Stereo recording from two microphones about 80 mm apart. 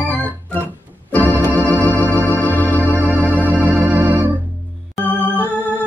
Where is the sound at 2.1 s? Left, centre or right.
Left.